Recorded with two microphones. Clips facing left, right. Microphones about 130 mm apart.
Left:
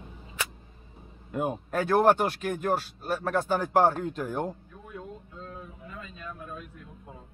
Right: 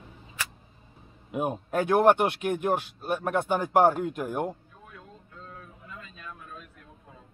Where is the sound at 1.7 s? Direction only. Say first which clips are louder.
Right 1 dB; 15° right (ahead or behind).